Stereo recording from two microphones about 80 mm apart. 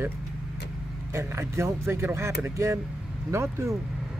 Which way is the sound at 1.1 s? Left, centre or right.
Right.